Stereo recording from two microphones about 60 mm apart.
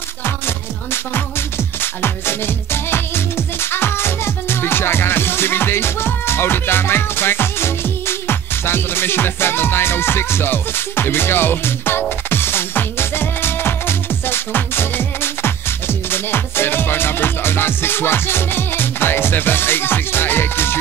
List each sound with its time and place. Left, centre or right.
1.8 s music: left